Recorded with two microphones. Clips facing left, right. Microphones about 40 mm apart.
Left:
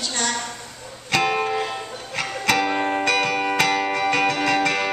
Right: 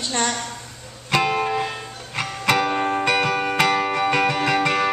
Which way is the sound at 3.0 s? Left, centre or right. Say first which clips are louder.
Right 1 dB; centre.